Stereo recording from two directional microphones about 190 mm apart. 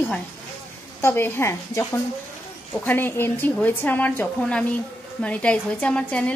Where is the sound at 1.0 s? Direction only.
10° left (ahead or behind).